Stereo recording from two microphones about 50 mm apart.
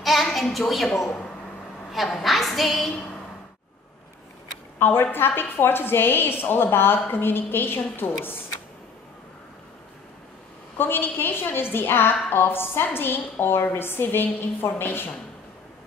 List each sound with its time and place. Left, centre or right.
0.0 s a woman's voice: centre
2.2 s a woman's voice: centre
4.7 s a woman's voice: left
10.8 s a woman's voice: left